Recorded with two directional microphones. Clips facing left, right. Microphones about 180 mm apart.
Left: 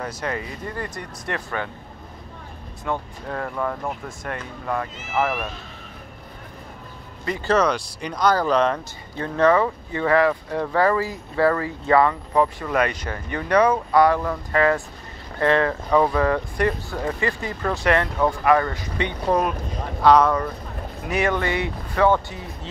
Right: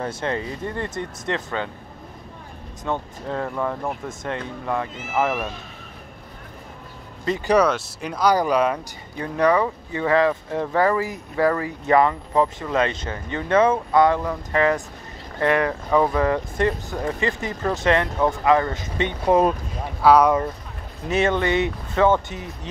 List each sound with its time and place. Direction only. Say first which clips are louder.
0.0 s speech: right 2 dB; 30° right (ahead or behind)
2.8 s speech: right 1 dB; 20° right (ahead or behind)
3.4 s speech: left 1 dB; 5° right (ahead or behind)
4.2 s speech: right 3 dB; 20° right (ahead or behind)
7.2 s speech: right 2 dB; 20° right (ahead or behind)
7.5 s speech: right 2 dB; 5° right (ahead or behind); by 19.5 s 20° right (ahead or behind)
20.0 s speech: right 1 dB; 10° right (ahead or behind)
21.1 s speech: right 2 dB; 25° right (ahead or behind)